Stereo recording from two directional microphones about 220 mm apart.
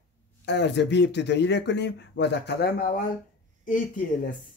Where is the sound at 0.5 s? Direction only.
50° left (ahead or behind).